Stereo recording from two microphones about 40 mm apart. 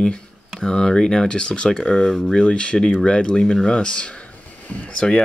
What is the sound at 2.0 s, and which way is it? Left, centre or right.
Speech, centre.